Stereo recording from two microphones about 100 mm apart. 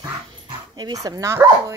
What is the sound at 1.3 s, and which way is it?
Speech, 25° right (ahead or behind).